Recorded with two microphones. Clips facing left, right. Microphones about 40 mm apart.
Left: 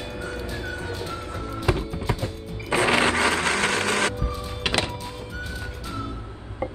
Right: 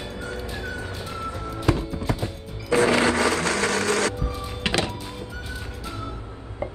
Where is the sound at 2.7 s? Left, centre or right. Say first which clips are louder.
Right 1 dB; left.